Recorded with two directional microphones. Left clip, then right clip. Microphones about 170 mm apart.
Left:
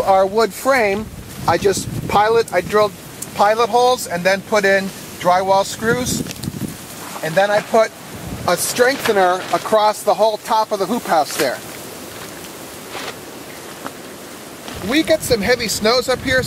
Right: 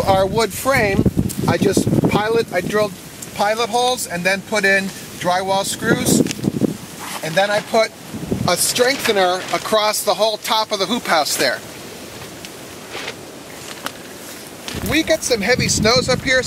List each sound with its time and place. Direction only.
0.2 s speech: 15° right (ahead or behind)
9.8 s speech: 35° right (ahead or behind)
14.9 s speech: centre (ahead or behind)